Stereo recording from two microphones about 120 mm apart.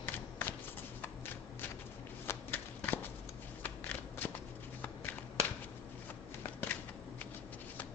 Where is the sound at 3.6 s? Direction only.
15° left (ahead or behind).